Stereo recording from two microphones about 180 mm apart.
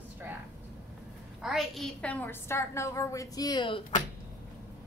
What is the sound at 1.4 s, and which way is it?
A woman's voice, centre (ahead or behind).